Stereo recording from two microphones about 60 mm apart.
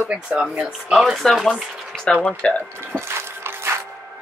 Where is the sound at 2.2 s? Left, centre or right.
Left.